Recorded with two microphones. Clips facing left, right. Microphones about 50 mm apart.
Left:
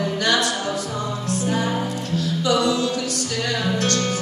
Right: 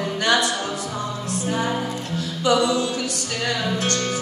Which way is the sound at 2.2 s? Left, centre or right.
Right.